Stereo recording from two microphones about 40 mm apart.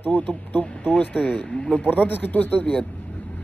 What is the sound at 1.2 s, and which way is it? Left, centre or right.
Speech, left.